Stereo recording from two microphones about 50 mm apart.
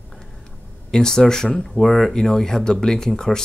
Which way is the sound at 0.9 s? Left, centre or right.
Centre.